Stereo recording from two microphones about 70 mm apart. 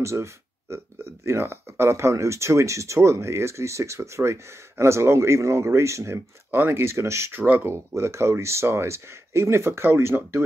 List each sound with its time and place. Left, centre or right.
0.0 s speech: right
7.4 s speech: right
7.7 s speech: right